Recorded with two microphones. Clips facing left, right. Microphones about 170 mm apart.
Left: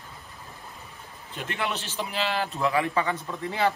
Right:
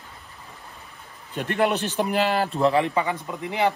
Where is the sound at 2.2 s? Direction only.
40° right (ahead or behind); by 3.7 s 15° right (ahead or behind).